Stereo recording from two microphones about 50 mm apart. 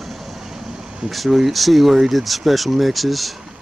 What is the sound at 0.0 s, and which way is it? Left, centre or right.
Vehicle, centre.